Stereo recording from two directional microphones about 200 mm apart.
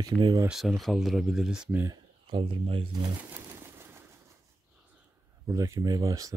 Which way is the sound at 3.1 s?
10° right (ahead or behind).